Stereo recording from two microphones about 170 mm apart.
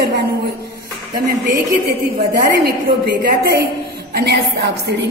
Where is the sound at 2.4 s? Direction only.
70° right (ahead or behind).